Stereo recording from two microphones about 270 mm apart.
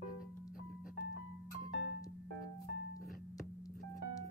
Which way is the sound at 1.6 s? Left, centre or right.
Left.